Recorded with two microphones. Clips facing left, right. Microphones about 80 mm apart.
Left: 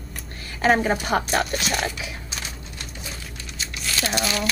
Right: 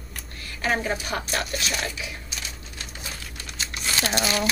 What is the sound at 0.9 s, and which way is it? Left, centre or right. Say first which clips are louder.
Speech: left 6 dB; left.